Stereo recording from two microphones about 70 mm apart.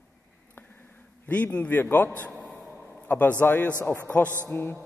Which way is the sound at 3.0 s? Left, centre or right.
Left.